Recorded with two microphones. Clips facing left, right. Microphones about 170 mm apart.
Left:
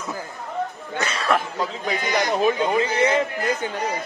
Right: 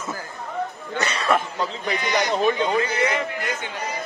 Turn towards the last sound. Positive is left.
turn(degrees=30)  # may be behind; listen again after turning